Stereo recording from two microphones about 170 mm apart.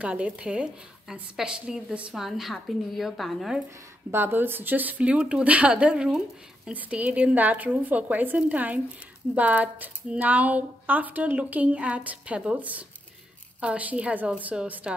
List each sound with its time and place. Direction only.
0.0 s a woman's voice: 5° right (ahead or behind)
4.1 s speech: 10° right (ahead or behind)